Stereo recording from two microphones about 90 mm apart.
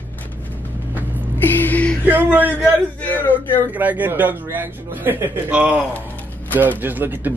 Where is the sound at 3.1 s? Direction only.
20° left (ahead or behind).